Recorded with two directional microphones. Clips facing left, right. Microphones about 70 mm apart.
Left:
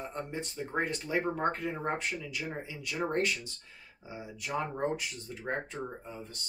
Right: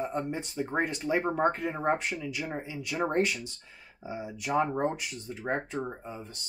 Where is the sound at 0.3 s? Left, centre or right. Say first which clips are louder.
Right 4 dB; right.